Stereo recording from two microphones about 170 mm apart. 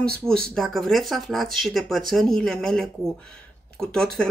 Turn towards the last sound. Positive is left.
turn(degrees=5)  # may be behind; listen again after turning